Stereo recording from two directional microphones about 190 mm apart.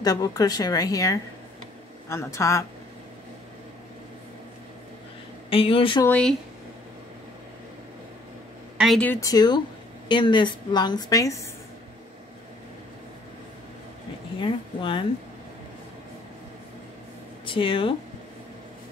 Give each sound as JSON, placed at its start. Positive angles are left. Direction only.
{"t": 0.0, "sound": "a woman's voice", "side_deg": 20}
{"t": 5.5, "sound": "a woman's voice", "side_deg": 30}
{"t": 6.0, "sound": "speech", "side_deg": 5}
{"t": 8.7, "sound": "a woman's voice", "side_deg": 0}
{"t": 14.4, "sound": "a woman's voice", "side_deg": 25}
{"t": 17.5, "sound": "a woman's voice", "side_deg": 25}